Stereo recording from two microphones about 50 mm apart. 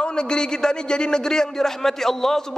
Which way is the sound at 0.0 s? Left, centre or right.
Centre.